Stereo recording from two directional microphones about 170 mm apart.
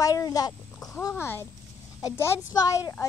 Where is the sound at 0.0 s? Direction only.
20° left (ahead or behind).